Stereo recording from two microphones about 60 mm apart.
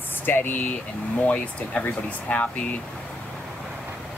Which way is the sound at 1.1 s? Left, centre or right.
Left.